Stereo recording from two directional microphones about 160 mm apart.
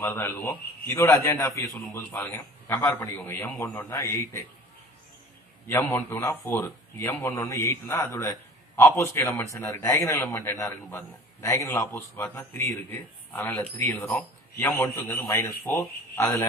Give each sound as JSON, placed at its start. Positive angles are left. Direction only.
{"t": 0.0, "sound": "a man's voice", "side_deg": 15}
{"t": 5.9, "sound": "a man's voice", "side_deg": 15}
{"t": 15.2, "sound": "a man's voice", "side_deg": 15}